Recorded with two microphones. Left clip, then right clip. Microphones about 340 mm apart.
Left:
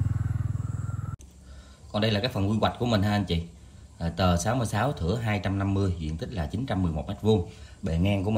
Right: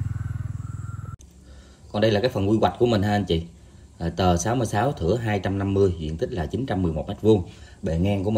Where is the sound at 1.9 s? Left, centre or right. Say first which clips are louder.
Right 6 dB; centre.